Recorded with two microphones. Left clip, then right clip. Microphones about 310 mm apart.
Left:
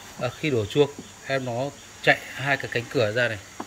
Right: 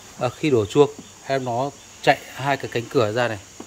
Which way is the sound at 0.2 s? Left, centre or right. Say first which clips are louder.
Right 5 dB; centre.